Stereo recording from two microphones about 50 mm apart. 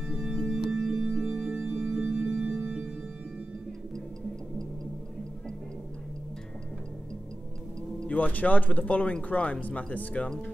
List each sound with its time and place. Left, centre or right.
0.0 s music: right
8.1 s speech: left